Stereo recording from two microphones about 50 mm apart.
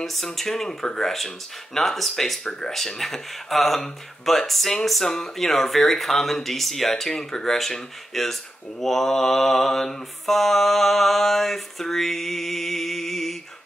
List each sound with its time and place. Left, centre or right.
0.0 s speech: centre
2.4 s mantra: centre